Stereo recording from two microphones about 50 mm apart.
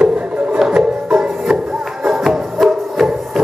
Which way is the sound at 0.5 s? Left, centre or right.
Centre.